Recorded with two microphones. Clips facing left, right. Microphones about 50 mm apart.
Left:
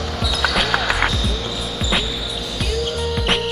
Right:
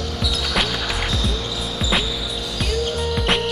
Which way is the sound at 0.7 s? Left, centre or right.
Left.